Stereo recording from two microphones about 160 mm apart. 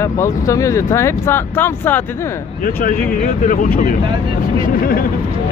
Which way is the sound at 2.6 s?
65° left (ahead or behind).